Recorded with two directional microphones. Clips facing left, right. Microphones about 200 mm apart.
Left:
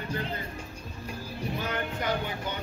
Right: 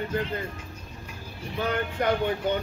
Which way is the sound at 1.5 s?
55° right (ahead or behind).